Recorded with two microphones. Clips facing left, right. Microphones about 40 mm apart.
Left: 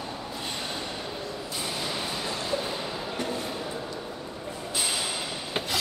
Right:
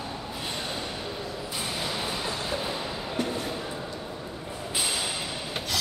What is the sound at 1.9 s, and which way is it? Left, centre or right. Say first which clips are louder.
Train: right 1 dB; centre.